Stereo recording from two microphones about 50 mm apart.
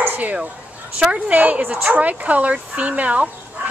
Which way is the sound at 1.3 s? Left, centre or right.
Right.